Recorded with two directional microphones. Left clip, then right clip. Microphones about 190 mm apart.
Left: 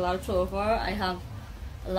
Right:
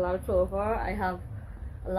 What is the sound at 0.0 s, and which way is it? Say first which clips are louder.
A woman's voice: right 1 dB; 30° left (ahead or behind).